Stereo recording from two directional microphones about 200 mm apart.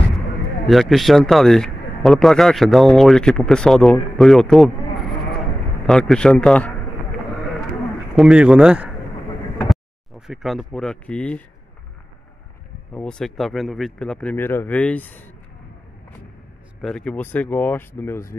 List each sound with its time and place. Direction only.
0.7 s speech: centre (ahead or behind)
8.2 s speech: 5° right (ahead or behind)
12.9 s speech: 5° left (ahead or behind)
16.8 s speech: 5° left (ahead or behind)